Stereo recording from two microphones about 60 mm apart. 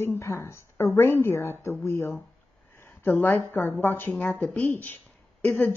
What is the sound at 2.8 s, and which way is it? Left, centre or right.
A woman's voice, left.